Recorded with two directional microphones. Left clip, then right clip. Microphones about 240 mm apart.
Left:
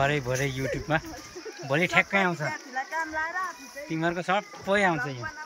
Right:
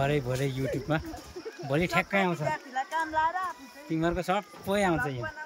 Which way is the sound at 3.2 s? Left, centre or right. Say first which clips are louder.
Right 5 dB; right.